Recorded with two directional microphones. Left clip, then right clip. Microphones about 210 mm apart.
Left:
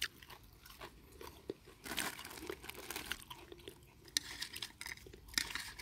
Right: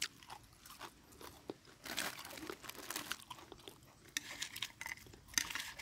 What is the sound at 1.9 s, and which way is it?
Crumpling, centre (ahead or behind).